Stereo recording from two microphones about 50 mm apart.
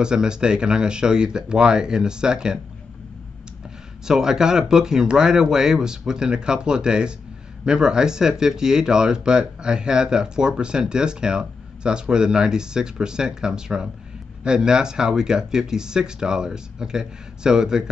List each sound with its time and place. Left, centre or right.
0.0 s speech: centre
4.0 s speech: centre